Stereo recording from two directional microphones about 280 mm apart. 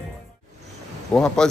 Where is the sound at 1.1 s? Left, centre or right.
Centre.